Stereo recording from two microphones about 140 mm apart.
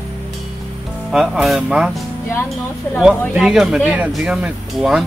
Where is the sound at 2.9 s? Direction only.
5° right (ahead or behind).